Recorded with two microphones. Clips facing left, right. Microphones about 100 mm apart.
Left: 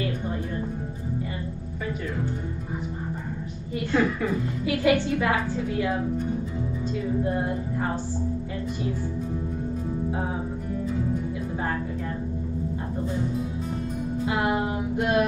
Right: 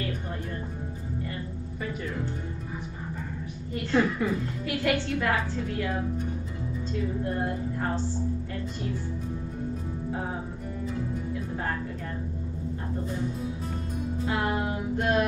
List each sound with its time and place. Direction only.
3.9 s a woman's voice: 5° left (ahead or behind)
7.3 s a woman's voice: 10° left (ahead or behind)
14.2 s music: 15° left (ahead or behind)